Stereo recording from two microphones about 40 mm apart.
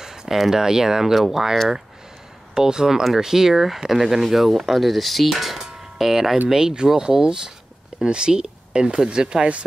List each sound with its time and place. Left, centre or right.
0.0 s speech: centre
5.7 s a sound: centre
6.5 s speech: centre